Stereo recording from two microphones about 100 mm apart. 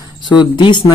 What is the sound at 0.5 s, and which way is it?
Speech, 50° left (ahead or behind).